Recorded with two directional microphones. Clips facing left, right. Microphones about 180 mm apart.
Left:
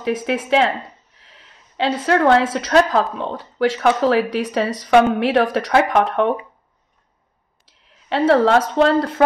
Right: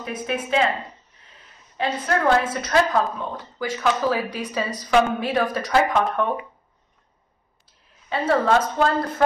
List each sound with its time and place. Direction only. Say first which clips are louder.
0.0 s a woman's voice: left 6 dB; 90° left
7.6 s speech: left 3 dB; 80° left